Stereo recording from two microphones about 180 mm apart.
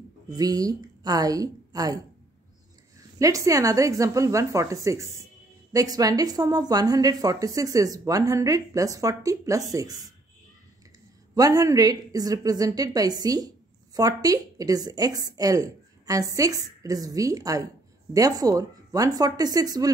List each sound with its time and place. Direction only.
0.4 s a woman's voice: 20° right (ahead or behind)
3.2 s speech: 20° right (ahead or behind)
11.3 s speech: 20° right (ahead or behind)